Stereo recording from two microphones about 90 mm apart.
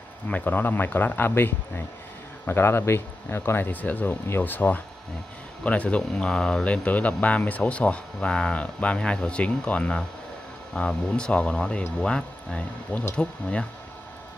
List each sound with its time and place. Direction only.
0.3 s speech: 20° left (ahead or behind)